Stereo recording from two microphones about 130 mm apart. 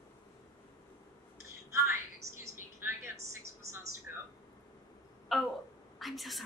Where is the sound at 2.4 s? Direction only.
20° right (ahead or behind).